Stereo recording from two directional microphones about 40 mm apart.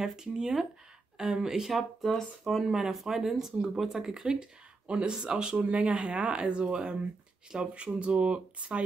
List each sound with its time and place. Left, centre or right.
0.0 s speech: centre; by 8.8 s right